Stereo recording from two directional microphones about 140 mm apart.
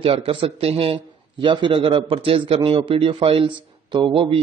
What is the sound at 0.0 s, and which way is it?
A man's voice, 40° right (ahead or behind).